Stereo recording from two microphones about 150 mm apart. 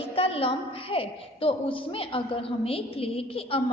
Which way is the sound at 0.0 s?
40° left (ahead or behind).